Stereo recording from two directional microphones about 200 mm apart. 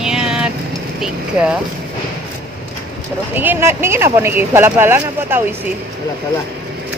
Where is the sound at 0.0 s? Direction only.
5° right (ahead or behind).